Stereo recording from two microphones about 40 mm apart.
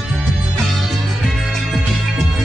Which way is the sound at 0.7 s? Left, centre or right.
Centre.